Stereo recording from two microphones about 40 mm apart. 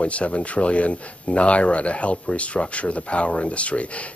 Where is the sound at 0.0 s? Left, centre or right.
Left.